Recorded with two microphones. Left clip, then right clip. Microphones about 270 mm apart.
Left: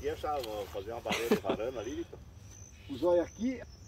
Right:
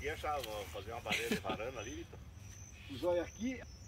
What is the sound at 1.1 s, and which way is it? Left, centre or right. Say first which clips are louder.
Speech: left 6 dB; centre.